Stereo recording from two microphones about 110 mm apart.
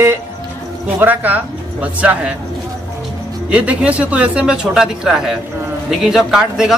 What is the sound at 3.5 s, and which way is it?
A man's voice, 10° right (ahead or behind).